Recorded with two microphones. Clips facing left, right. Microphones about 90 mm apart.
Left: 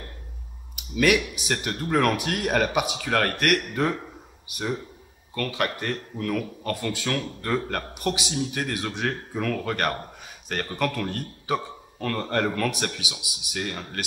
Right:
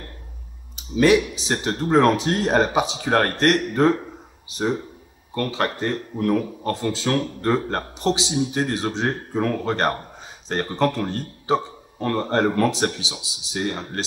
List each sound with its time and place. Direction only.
0.7 s speech: 30° right (ahead or behind)